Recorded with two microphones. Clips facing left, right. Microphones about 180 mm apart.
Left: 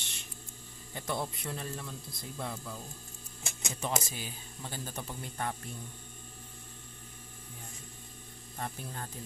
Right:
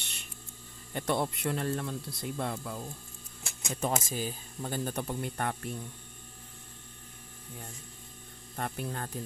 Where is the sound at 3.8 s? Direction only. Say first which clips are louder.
Right 4 dB; 45° right (ahead or behind); by 5.7 s 60° right (ahead or behind).